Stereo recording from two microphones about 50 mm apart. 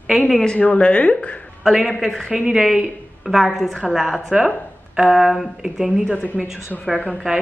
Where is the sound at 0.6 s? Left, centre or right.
Left.